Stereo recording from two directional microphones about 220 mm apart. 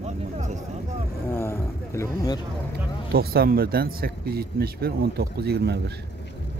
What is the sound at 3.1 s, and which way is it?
Speech, 45° right (ahead or behind).